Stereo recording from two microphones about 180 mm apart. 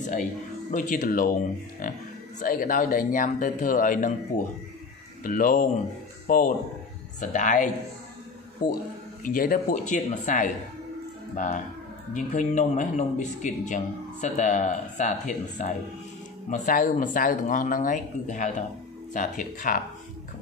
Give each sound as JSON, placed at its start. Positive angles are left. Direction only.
{"t": 0.0, "sound": "a man's voice", "side_deg": 45}
{"t": 2.4, "sound": "a man's voice", "side_deg": 50}
{"t": 5.2, "sound": "a man's voice", "side_deg": 50}
{"t": 9.2, "sound": "a man's voice", "side_deg": 50}